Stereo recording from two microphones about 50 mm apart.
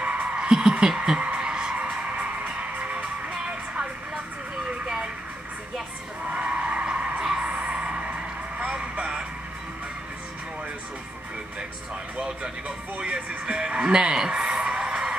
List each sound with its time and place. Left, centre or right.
0.0 s a sound: right
0.4 s music: centre
4.6 s vehicle: centre
6.3 s a sound: right
8.6 s vehicle: centre
12.2 s music: centre